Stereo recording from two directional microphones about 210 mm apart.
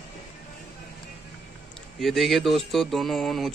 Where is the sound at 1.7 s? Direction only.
Centre (ahead or behind).